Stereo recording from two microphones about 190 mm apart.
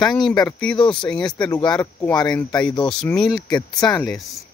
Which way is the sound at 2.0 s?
20° left (ahead or behind).